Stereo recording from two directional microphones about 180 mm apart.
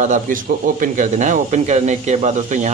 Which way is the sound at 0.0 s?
45° right (ahead or behind).